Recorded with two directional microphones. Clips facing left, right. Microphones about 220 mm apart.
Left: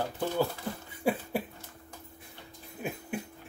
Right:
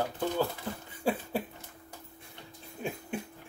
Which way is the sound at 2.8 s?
5° left (ahead or behind).